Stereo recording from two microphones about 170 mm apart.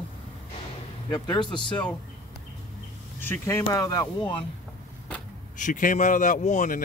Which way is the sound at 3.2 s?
15° left (ahead or behind).